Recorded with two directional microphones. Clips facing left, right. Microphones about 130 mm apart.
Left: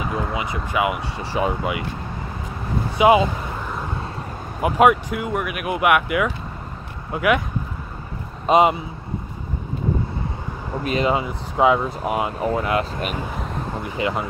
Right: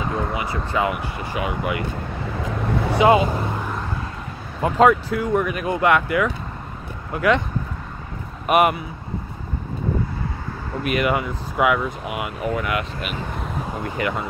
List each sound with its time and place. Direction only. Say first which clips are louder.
0.3 s speech: even; 20° left (ahead or behind)
1.1 s speech: left 3 dB; 30° left (ahead or behind)
2.4 s vehicle: right 4 dB; 80° right
3.0 s speech: left 1 dB; 15° left (ahead or behind)
4.6 s speech: even; 15° left (ahead or behind)
8.5 s speech: left 2 dB; 20° left (ahead or behind)
10.8 s speech: even; 25° left (ahead or behind)
13.8 s speech: left 1 dB; 20° left (ahead or behind)